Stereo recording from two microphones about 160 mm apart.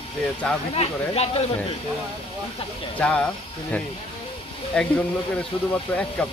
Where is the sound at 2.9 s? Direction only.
10° left (ahead or behind).